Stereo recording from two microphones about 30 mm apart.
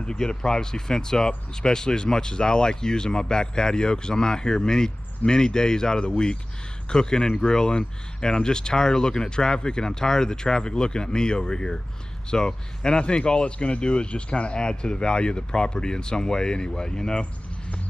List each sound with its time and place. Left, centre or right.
0.0 s speech: left